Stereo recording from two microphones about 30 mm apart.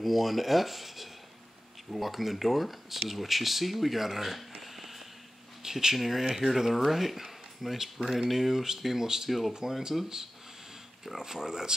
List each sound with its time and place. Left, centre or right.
0.0 s speech: centre
4.6 s a sound: centre
5.6 s speech: centre
11.1 s speech: centre